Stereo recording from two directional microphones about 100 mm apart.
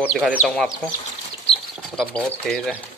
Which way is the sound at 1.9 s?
10° left (ahead or behind).